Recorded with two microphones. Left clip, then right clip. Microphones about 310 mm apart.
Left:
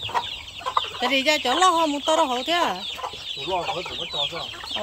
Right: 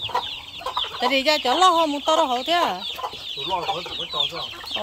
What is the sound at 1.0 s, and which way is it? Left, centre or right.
Speech, centre.